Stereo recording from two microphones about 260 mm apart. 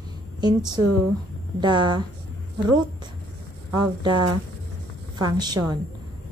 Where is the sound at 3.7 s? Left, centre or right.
Centre.